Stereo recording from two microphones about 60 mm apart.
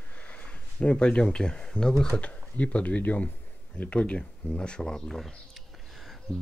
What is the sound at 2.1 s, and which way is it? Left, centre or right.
Speech, left.